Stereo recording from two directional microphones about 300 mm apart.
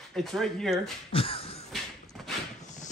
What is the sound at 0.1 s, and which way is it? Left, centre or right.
Speech, centre.